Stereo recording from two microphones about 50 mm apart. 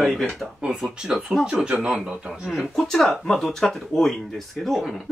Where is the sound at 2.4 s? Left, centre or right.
Centre.